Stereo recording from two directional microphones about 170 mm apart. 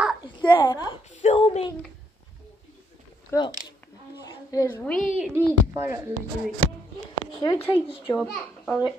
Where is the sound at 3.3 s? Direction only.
15° left (ahead or behind).